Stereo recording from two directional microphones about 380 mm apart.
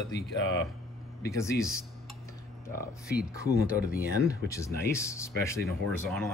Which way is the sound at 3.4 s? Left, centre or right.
Left.